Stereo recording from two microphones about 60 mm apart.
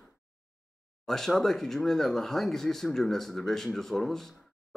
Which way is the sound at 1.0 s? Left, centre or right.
Centre.